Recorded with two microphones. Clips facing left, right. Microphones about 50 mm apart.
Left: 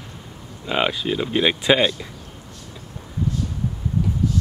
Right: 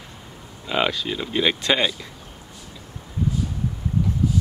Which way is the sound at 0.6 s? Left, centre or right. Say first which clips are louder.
Left 1 dB; centre.